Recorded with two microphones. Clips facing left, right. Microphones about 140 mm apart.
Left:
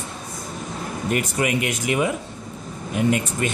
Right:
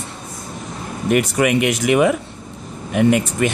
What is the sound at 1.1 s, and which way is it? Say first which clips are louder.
Speech: right 7 dB; 70° right (ahead or behind).